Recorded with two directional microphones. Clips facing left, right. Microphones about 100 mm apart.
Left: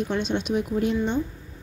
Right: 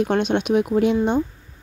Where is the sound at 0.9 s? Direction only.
50° right (ahead or behind).